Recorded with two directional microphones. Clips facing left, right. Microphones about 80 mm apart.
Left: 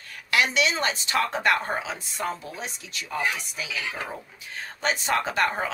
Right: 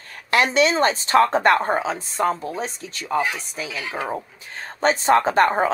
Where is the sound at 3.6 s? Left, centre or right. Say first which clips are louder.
Right 5 dB; right.